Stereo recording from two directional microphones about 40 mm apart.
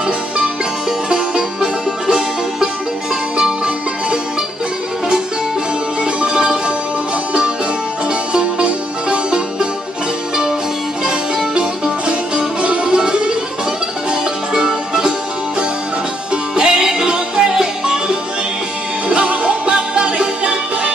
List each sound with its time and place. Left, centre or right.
1.0 s music: centre
6.2 s music: centre
8.1 s music: right
11.5 s music: right
14.5 s music: centre
16.5 s music: centre